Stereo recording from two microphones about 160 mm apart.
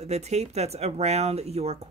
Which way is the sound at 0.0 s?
45° right (ahead or behind).